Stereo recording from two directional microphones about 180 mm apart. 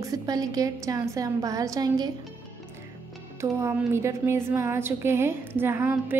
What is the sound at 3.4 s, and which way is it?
A woman's voice, 15° right (ahead or behind).